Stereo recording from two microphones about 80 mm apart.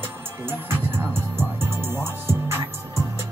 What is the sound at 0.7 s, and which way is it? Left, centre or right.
Music, right.